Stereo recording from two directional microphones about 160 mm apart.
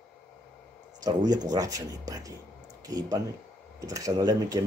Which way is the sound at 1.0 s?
25° right (ahead or behind).